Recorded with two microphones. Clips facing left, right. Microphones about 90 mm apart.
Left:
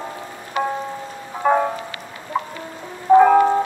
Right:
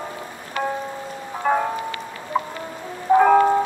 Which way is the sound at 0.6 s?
20° left (ahead or behind).